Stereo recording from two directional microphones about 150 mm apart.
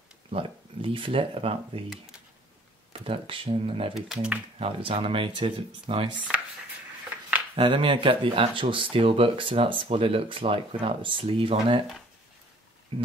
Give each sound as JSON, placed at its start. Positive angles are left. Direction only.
{"t": 0.3, "sound": "speech", "side_deg": -35}
{"t": 2.9, "sound": "speech", "side_deg": -35}
{"t": 3.9, "sound": "speech", "side_deg": -5}
{"t": 4.6, "sound": "speech", "side_deg": -40}
{"t": 6.1, "sound": "a sound", "side_deg": -10}
{"t": 7.5, "sound": "speech", "side_deg": -35}
{"t": 12.9, "sound": "speech", "side_deg": -35}